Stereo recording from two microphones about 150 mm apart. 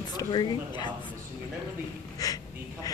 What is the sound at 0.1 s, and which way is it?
Speech, 30° left (ahead or behind).